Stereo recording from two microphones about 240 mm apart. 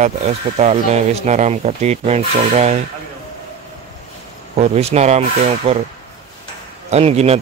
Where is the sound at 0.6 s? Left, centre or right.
Right.